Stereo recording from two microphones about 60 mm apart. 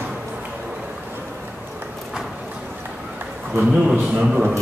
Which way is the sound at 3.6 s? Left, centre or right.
Centre.